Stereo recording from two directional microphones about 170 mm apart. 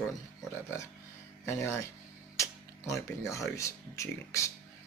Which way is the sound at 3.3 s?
20° left (ahead or behind).